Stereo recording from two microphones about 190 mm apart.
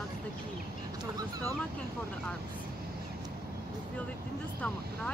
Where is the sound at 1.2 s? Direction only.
20° right (ahead or behind).